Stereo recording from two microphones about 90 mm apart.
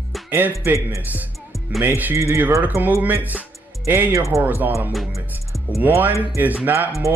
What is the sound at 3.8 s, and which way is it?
Speech, 30° right (ahead or behind).